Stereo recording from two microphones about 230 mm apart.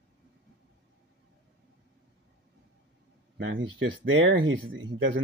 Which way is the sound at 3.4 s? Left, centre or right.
Right.